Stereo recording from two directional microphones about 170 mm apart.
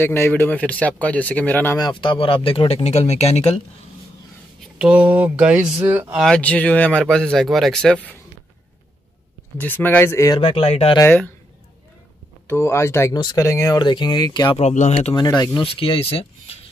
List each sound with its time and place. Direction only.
0.0 s speech: 15° left (ahead or behind)
1.8 s speech: 25° left (ahead or behind)
4.7 s speech: 5° right (ahead or behind)
6.2 s speech: 5° left (ahead or behind)
9.6 s speech: 10° left (ahead or behind)
10.4 s speech: 35° left (ahead or behind)
11.0 s speech: 10° left (ahead or behind)
12.4 s speech: 15° left (ahead or behind)
14.6 s speech: 40° left (ahead or behind)
15.1 s speech: 25° left (ahead or behind)